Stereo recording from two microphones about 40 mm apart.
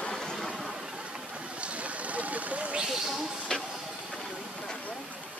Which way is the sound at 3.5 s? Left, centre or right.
Centre.